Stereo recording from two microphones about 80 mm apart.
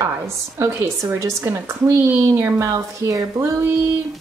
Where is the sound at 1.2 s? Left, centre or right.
Right.